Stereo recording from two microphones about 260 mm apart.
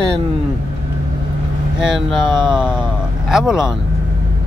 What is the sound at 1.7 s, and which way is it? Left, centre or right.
Speech, centre.